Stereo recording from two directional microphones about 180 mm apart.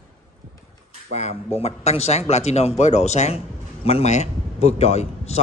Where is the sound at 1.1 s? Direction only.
40° left (ahead or behind).